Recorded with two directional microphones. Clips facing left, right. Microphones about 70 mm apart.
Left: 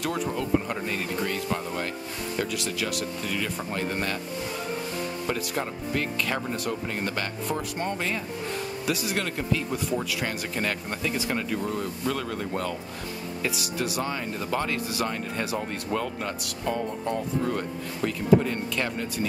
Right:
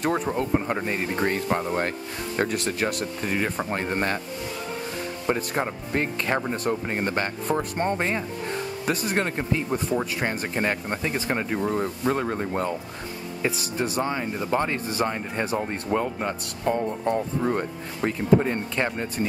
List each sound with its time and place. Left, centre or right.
0.0 s speech: right
5.5 s speech: right
14.1 s speech: right